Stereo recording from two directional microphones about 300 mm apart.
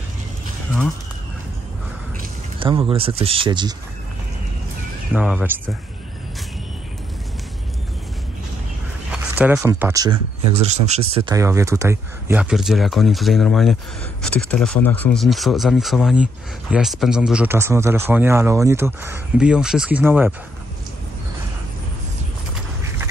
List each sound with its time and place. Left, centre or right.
2.6 s speech: centre
5.1 s speech: centre
9.1 s speech: centre
10.9 s speech: centre